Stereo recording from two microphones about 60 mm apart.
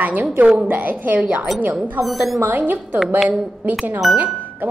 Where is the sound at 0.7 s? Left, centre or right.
Right.